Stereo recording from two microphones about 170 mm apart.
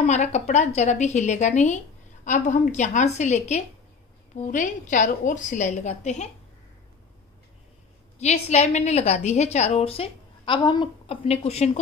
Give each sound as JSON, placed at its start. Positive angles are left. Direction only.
{"t": 0.0, "sound": "a woman's voice", "side_deg": 40}
{"t": 8.2, "sound": "a woman's voice", "side_deg": 40}